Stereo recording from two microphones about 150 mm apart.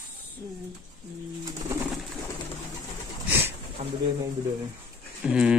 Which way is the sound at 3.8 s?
50° right (ahead or behind).